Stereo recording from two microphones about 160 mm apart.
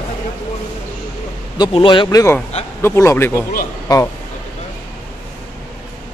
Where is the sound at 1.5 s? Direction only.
30° left (ahead or behind).